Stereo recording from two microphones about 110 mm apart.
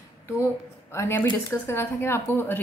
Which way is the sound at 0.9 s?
25° left (ahead or behind).